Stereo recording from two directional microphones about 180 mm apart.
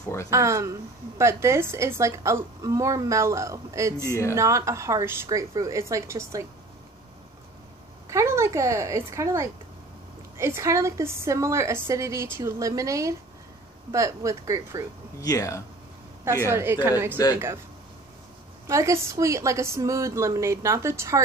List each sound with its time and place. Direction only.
0.0 s speech: 15° left (ahead or behind)
0.3 s a woman's voice: 15° right (ahead or behind)
4.1 s speech: 15° left (ahead or behind)
4.4 s a woman's voice: 15° right (ahead or behind)
8.1 s a woman's voice: 15° right (ahead or behind)
15.1 s speech: 20° left (ahead or behind)
16.4 s a woman's voice: 15° right (ahead or behind)
17.2 s speech: 20° left (ahead or behind)
18.7 s a woman's voice: 15° right (ahead or behind)